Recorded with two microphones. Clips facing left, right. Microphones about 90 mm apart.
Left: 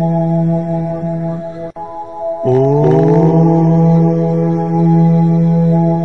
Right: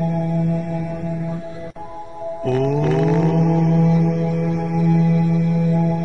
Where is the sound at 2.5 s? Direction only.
30° left (ahead or behind).